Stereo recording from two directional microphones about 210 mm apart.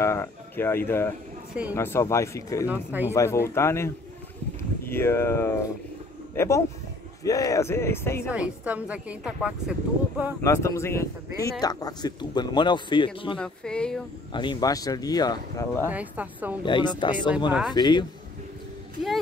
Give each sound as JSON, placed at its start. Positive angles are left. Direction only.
{"t": 0.0, "sound": "speech", "side_deg": 15}
{"t": 1.5, "sound": "speech", "side_deg": -5}
{"t": 1.8, "sound": "speech", "side_deg": 10}
{"t": 2.7, "sound": "a woman's voice", "side_deg": -10}
{"t": 3.1, "sound": "speech", "side_deg": 15}
{"t": 8.3, "sound": "a woman's voice", "side_deg": -5}
{"t": 10.4, "sound": "a man's voice", "side_deg": 15}
{"t": 13.4, "sound": "a sound", "side_deg": 5}
{"t": 14.3, "sound": "speech", "side_deg": 20}
{"t": 15.9, "sound": "a woman's voice", "side_deg": -5}
{"t": 16.6, "sound": "a man's voice", "side_deg": 20}
{"t": 17.5, "sound": "a sound", "side_deg": -5}
{"t": 17.7, "sound": "a man's voice", "side_deg": 20}